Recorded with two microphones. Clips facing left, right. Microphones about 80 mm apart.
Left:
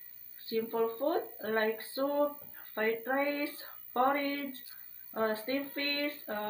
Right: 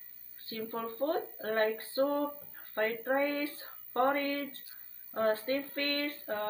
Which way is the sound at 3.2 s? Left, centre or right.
Centre.